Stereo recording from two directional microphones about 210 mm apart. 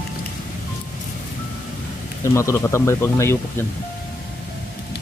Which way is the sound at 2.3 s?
15° left (ahead or behind).